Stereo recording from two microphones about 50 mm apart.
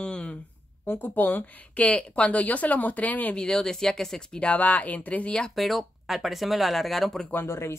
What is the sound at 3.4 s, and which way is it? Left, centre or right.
Speech, centre.